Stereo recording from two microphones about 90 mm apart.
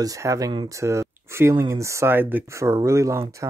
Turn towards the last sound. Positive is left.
turn(degrees=-35)  # may be behind; listen again after turning